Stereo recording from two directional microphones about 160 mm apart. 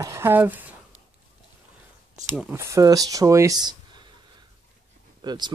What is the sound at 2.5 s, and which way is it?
Speech, 20° right (ahead or behind).